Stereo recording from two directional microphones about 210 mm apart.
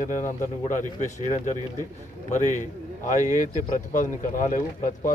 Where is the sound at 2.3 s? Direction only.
35° left (ahead or behind).